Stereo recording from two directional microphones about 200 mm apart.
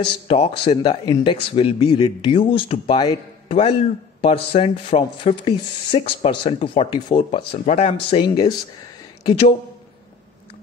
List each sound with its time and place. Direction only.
0.0 s speech: 30° left (ahead or behind)